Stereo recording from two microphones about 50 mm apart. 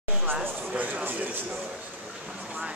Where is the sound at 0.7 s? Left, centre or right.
Right.